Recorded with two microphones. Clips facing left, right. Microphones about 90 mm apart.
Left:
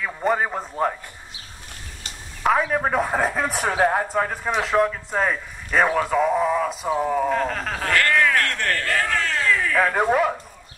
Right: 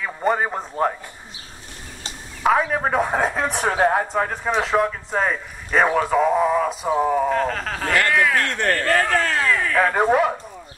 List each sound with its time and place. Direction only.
0.0 s speech: 5° right (ahead or behind)
2.4 s a man's voice: 5° right (ahead or behind)
7.9 s speech: 10° right (ahead or behind)
8.4 s speech: 20° right (ahead or behind)
8.6 s a man's voice: 40° right (ahead or behind)
9.6 s speech: centre (ahead or behind)